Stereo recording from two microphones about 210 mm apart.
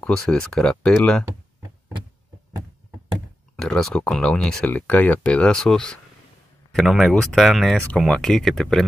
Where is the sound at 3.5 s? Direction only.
Centre (ahead or behind).